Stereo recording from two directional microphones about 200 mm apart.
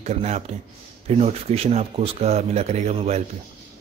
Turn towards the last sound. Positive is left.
turn(degrees=-35)  # may be behind; listen again after turning